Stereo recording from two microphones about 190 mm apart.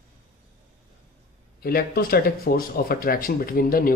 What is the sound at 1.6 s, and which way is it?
Speech, 55° left (ahead or behind).